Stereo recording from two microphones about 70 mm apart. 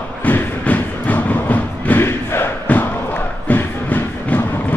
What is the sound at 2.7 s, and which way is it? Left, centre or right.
Crowd, left.